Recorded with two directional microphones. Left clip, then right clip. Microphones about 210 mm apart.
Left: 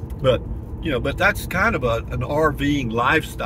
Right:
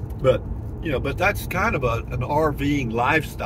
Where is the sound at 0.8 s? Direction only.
15° left (ahead or behind).